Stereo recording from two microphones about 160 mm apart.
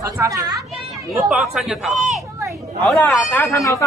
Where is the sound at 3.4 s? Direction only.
20° left (ahead or behind).